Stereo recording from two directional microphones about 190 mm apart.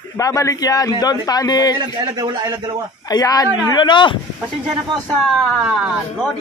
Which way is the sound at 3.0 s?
20° left (ahead or behind).